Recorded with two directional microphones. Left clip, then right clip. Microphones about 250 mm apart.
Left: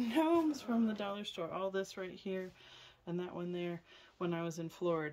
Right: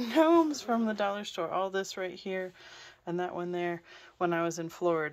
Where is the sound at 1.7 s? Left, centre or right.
Centre.